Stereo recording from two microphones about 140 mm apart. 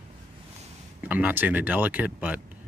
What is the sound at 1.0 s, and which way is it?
Speech, 10° right (ahead or behind).